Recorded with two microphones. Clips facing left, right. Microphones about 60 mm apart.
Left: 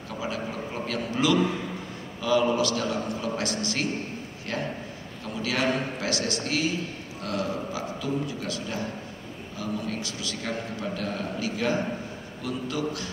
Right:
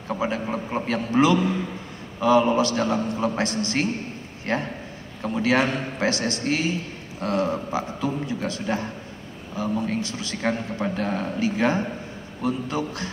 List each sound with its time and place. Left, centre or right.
0.2 s a man's voice: right